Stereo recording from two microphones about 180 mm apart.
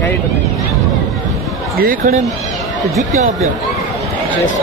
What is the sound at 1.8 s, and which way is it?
Speech, 45° right (ahead or behind).